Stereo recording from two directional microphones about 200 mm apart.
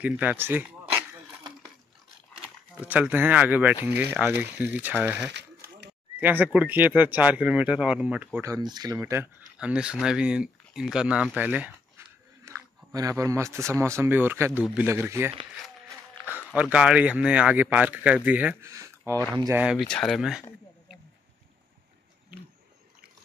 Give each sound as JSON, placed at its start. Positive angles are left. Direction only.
{"t": 0.0, "sound": "speech", "side_deg": -10}
{"t": 2.8, "sound": "speech", "side_deg": -5}
{"t": 5.3, "sound": "a sound", "side_deg": -60}
{"t": 6.1, "sound": "speech", "side_deg": -10}
{"t": 12.0, "sound": "dog", "side_deg": -15}
{"t": 12.4, "sound": "speech", "side_deg": -15}
{"t": 16.3, "sound": "speech", "side_deg": -5}
{"t": 19.6, "sound": "speech", "side_deg": 0}